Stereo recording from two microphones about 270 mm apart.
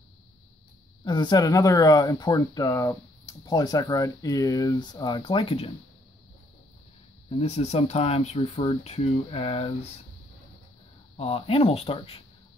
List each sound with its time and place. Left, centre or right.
1.0 s speech: centre
7.2 s speech: left
11.1 s speech: left